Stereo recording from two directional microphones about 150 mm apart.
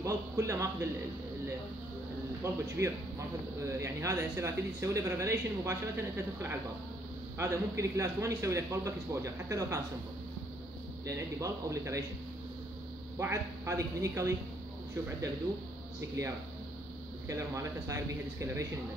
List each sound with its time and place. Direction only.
0.0 s speech: 20° right (ahead or behind)
2.4 s speech: 15° right (ahead or behind)
3.6 s speech: 20° right (ahead or behind)
11.1 s speech: 20° right (ahead or behind)
13.2 s speech: 20° right (ahead or behind)
17.3 s speech: 20° right (ahead or behind)